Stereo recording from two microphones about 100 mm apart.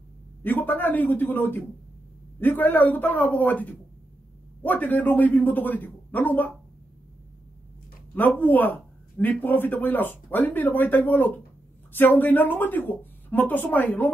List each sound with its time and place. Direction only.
0.4 s speech: 20° left (ahead or behind)
8.1 s speech: 20° left (ahead or behind)